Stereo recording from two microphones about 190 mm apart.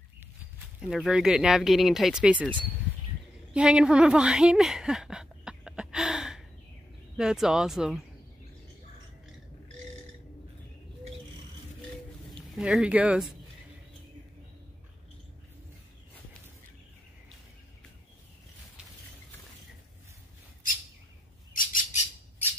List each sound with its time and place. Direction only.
0.7 s speech: 5° right (ahead or behind)
3.5 s a sound: 5° right (ahead or behind)
7.2 s speech: 5° right (ahead or behind)
12.3 s speech: centre (ahead or behind)
21.5 s bird: 45° left (ahead or behind)